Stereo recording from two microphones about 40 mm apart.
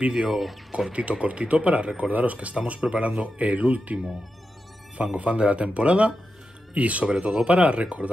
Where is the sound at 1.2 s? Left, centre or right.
Right.